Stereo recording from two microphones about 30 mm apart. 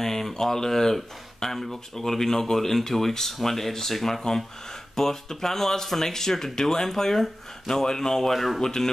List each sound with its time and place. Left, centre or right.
0.0 s speech: centre
8.3 s speech: centre
8.5 s speech: centre